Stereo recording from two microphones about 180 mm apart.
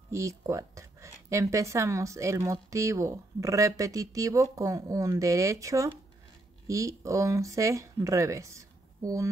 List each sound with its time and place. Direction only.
0.1 s a woman's voice: 15° right (ahead or behind)